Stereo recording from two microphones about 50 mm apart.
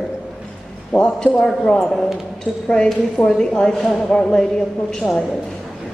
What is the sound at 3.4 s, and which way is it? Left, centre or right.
A woman's voice, centre.